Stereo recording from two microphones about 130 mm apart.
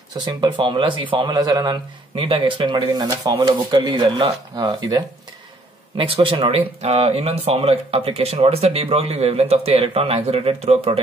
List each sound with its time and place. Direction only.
0.2 s speech: 35° right (ahead or behind)
5.9 s speech: 40° right (ahead or behind)
6.8 s speech: 50° right (ahead or behind)